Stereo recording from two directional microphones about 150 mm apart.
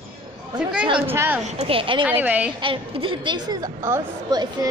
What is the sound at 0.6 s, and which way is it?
Speech, 5° right (ahead or behind).